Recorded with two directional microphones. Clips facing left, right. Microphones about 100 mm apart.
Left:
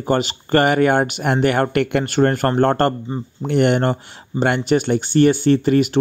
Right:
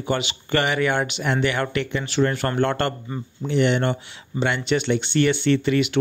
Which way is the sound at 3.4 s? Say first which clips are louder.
Left 4 dB; 55° left (ahead or behind).